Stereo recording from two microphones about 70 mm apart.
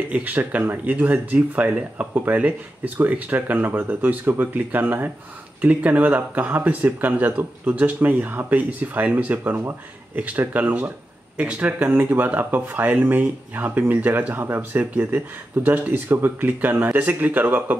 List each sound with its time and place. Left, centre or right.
0.1 s speech: right